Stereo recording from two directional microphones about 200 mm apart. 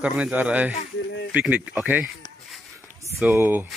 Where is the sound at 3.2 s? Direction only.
10° right (ahead or behind).